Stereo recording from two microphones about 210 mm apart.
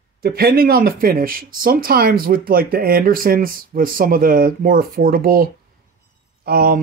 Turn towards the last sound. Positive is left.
turn(degrees=-45)  # may be behind; listen again after turning